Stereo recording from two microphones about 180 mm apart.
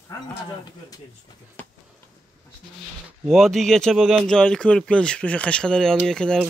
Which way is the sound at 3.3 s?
Centre (ahead or behind).